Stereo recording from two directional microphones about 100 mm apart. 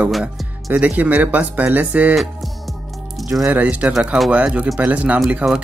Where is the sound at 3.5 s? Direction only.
15° right (ahead or behind).